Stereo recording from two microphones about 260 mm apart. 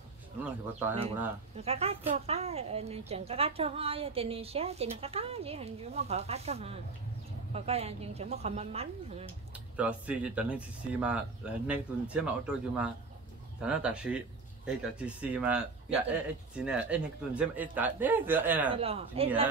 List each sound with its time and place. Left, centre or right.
0.4 s speech: centre
1.6 s a woman's voice: right
9.8 s speech: centre
18.8 s a woman's voice: right